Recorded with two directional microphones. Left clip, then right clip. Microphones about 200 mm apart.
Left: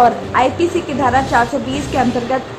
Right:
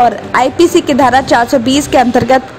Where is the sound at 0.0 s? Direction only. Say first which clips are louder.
Right 3 dB; 45° right (ahead or behind).